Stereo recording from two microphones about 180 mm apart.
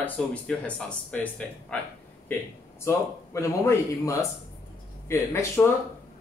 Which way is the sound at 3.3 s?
15° left (ahead or behind).